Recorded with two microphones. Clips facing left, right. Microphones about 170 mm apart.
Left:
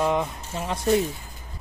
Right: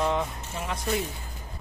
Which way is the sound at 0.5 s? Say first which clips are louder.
Left 4 dB; 25° left (ahead or behind).